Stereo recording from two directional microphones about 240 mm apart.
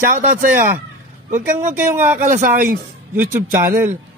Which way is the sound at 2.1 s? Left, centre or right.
Right.